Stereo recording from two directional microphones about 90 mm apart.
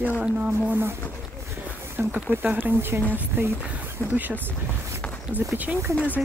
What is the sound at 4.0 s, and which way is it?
Speech, 20° left (ahead or behind).